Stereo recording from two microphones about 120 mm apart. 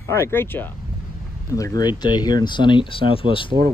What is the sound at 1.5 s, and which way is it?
Speech, 30° left (ahead or behind).